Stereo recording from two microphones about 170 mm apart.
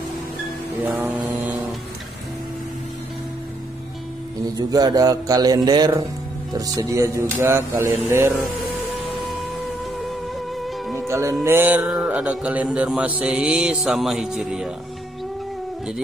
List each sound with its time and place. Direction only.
0.8 s mantra: 5° right (ahead or behind)
4.6 s a man's voice: 20° right (ahead or behind)
7.3 s mantra: 15° right (ahead or behind)
11.1 s music: 15° right (ahead or behind)
11.4 s mantra: 10° right (ahead or behind)